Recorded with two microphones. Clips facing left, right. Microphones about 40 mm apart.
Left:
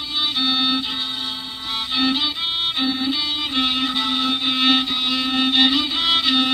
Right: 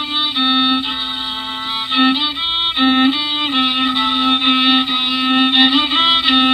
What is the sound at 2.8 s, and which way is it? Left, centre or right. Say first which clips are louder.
Violin: right 12 dB; right.